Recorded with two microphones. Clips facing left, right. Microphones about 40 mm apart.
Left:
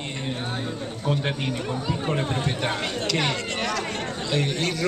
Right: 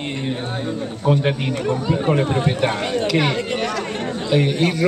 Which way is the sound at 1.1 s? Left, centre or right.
Centre.